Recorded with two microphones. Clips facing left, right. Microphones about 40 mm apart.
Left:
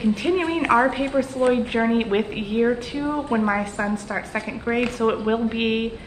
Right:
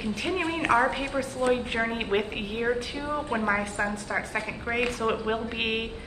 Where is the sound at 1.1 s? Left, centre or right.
Centre.